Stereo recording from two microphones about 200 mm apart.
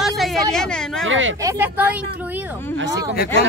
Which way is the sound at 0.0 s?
Centre (ahead or behind).